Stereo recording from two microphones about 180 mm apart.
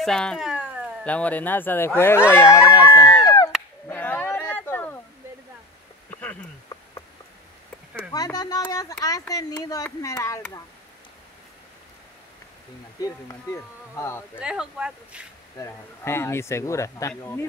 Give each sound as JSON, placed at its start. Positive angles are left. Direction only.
{"t": 0.0, "sound": "cat", "side_deg": 5}
{"t": 1.0, "sound": "speech", "side_deg": 10}
{"t": 3.3, "sound": "a sound", "side_deg": 20}
{"t": 8.1, "sound": "speech", "side_deg": 20}
{"t": 13.3, "sound": "speech", "side_deg": 15}
{"t": 14.4, "sound": "speech", "side_deg": -5}
{"t": 15.5, "sound": "speech", "side_deg": 15}